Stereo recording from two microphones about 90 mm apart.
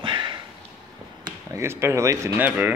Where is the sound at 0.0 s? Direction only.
60° right (ahead or behind).